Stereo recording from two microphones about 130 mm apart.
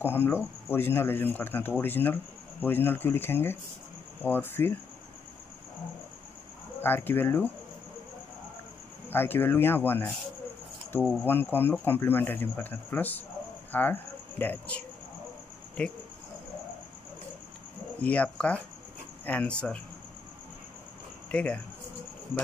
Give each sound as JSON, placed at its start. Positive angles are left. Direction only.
{"t": 0.0, "sound": "speech", "side_deg": 15}
{"t": 6.8, "sound": "speech", "side_deg": 15}
{"t": 9.1, "sound": "speech", "side_deg": 15}
{"t": 11.2, "sound": "speech", "side_deg": 15}
{"t": 13.7, "sound": "cricket", "side_deg": 15}
{"t": 14.4, "sound": "speech", "side_deg": 15}
{"t": 15.8, "sound": "speech", "side_deg": 5}
{"t": 18.0, "sound": "speech", "side_deg": 10}
{"t": 21.3, "sound": "speech", "side_deg": 10}